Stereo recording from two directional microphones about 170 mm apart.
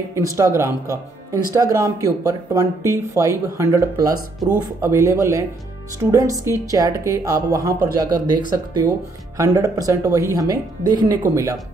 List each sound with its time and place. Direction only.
0.1 s speech: 20° right (ahead or behind)